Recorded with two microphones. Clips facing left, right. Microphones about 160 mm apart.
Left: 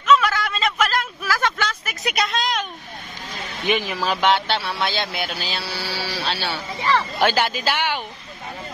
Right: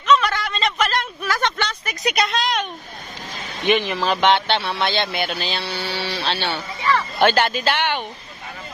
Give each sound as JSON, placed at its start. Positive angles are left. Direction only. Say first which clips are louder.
{"t": 0.0, "sound": "a sound", "louder": "even", "side_deg": 5}
{"t": 3.6, "sound": "speech", "louder": "right 3 dB", "side_deg": 5}
{"t": 6.8, "sound": "speech", "louder": "even", "side_deg": 30}
{"t": 7.2, "sound": "speech", "louder": "right 3 dB", "side_deg": 5}